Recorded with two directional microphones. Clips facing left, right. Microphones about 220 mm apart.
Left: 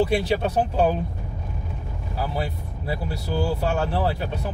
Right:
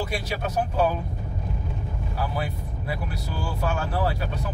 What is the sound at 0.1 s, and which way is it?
Speech, 25° left (ahead or behind).